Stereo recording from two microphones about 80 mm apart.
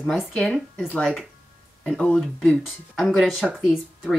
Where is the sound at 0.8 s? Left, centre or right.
Centre.